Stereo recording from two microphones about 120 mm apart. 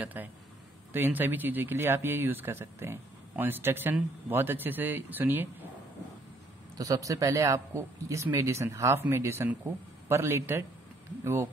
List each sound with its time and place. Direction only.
0.0 s speech: 15° right (ahead or behind)
6.8 s speech: 30° right (ahead or behind)